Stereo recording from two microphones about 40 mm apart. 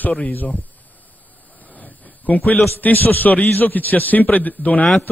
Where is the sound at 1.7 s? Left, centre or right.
Left.